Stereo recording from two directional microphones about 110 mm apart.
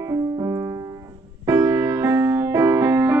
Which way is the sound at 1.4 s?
25° right (ahead or behind).